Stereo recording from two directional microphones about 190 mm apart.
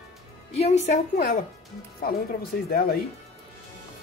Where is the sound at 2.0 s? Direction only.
50° left (ahead or behind).